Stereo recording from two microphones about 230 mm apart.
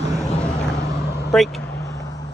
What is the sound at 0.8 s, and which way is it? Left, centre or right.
Vehicle, left.